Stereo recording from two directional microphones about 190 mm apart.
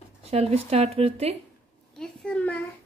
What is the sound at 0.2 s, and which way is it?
Speech, 35° right (ahead or behind).